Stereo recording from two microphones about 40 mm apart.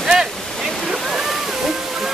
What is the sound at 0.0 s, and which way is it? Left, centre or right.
Waves, centre.